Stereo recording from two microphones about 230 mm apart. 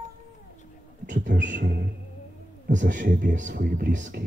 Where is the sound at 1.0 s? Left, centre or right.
Right.